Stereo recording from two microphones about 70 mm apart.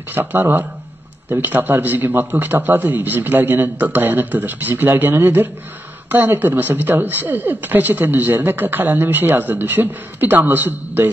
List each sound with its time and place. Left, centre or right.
0.1 s speech: right